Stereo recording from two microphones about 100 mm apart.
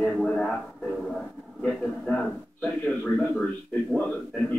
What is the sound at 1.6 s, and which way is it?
A man's voice, 10° left (ahead or behind).